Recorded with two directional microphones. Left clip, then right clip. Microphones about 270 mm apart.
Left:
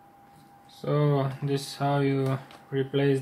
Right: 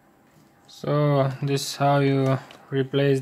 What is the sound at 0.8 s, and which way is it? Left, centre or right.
Speech, right.